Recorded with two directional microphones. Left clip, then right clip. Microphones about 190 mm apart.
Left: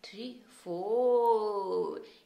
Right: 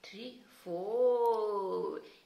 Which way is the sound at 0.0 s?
50° left (ahead or behind).